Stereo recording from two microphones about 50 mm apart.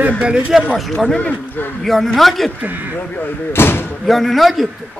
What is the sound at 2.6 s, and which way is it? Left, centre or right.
Speech, right.